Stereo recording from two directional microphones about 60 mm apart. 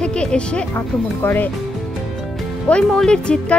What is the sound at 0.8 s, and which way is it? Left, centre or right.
Speech, left.